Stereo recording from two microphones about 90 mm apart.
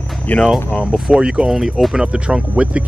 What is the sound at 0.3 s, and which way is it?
Speech, 15° left (ahead or behind).